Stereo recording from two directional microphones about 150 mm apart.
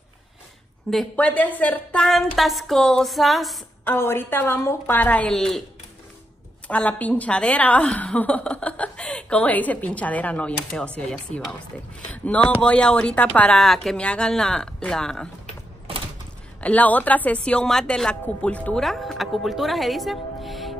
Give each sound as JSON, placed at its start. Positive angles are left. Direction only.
{"t": 0.8, "sound": "speech", "side_deg": 5}
{"t": 3.8, "sound": "a woman's voice", "side_deg": 15}
{"t": 6.7, "sound": "a woman's voice", "side_deg": 10}
{"t": 16.6, "sound": "a woman's voice", "side_deg": 10}